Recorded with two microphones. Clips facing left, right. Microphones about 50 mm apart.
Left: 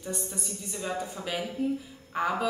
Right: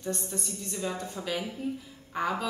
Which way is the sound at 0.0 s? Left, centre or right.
Centre.